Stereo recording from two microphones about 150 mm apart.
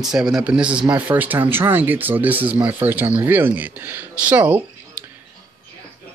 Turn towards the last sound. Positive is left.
turn(degrees=-10)  # may be behind; listen again after turning